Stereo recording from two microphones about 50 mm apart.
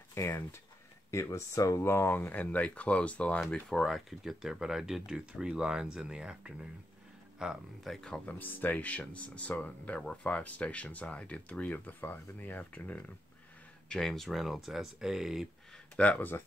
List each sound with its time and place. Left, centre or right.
1.1 s speech: left
2.0 s speech: left
2.4 s speech: left
3.6 s speech: centre
4.2 s speech: centre
7.9 s speech: centre
8.3 s speech: left
13.8 s speech: centre
16.2 s speech: left